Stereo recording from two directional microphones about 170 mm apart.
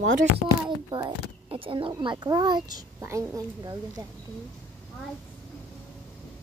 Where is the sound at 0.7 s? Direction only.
25° right (ahead or behind).